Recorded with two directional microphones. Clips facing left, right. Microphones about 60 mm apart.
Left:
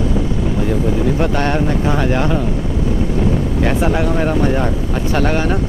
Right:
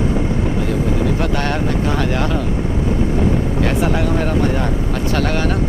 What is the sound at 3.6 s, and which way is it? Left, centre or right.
Speech, centre.